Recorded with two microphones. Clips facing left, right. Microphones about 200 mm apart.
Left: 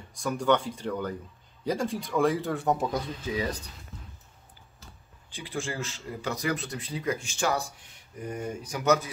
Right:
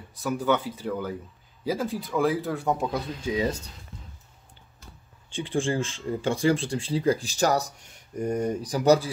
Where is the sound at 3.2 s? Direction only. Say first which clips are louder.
Right 8 dB; 25° right (ahead or behind).